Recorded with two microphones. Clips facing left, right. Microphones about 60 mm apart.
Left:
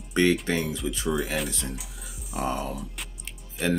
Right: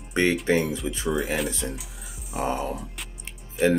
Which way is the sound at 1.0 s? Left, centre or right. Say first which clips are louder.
Right 2 dB; centre.